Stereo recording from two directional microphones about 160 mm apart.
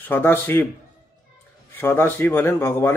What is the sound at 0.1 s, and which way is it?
Speech, 15° left (ahead or behind).